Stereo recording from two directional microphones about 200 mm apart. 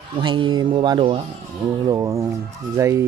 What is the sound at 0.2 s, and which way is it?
Speech, 25° right (ahead or behind).